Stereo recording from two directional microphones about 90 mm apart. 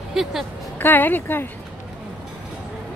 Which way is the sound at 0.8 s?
20° left (ahead or behind).